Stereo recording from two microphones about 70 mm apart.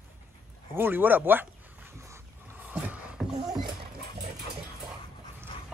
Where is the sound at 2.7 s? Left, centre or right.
Centre.